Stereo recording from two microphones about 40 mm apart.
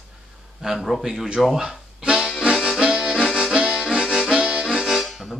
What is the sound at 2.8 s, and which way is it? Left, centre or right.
Music, centre.